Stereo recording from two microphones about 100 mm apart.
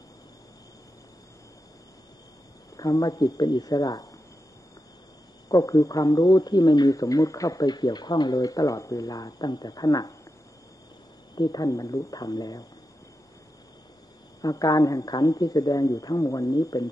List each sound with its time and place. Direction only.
2.8 s speech: 35° left (ahead or behind)
5.5 s speech: 35° left (ahead or behind)
11.3 s speech: 40° left (ahead or behind)
14.4 s speech: 40° left (ahead or behind)